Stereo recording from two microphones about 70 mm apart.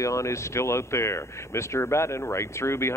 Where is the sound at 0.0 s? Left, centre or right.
Left.